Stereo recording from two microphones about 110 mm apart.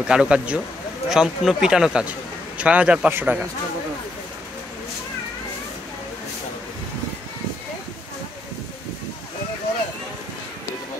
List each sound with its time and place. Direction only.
0.0 s a man's voice: 10° right (ahead or behind)